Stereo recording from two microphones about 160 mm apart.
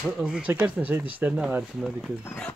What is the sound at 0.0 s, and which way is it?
Speech, 5° right (ahead or behind).